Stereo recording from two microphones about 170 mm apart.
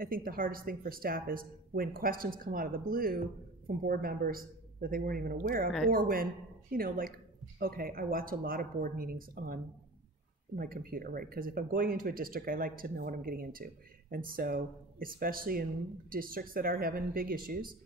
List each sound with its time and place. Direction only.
0.0 s speech: 55° right (ahead or behind)